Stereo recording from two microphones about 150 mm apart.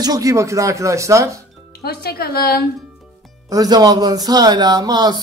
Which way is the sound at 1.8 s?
90° left.